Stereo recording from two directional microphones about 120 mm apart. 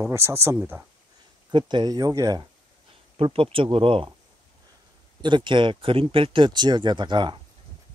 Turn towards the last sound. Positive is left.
turn(degrees=-40)  # may be behind; listen again after turning